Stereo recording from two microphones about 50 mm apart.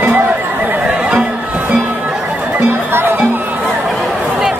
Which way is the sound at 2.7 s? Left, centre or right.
Right.